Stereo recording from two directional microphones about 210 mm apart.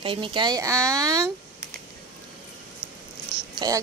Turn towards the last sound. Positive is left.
turn(degrees=-15)  # may be behind; listen again after turning